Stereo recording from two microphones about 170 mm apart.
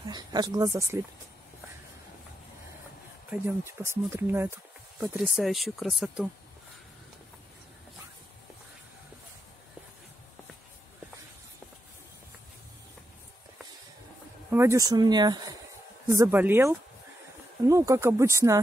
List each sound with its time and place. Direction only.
0.0 s speech: 25° right (ahead or behind)
3.3 s speech: 15° right (ahead or behind)
5.1 s speech: centre (ahead or behind)
14.5 s speech: 15° right (ahead or behind)
16.2 s speech: 10° right (ahead or behind)